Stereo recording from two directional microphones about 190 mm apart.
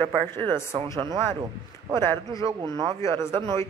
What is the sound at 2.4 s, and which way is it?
Speech, 25° right (ahead or behind).